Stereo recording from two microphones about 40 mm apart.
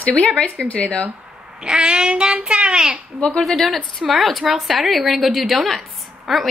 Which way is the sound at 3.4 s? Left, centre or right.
Centre.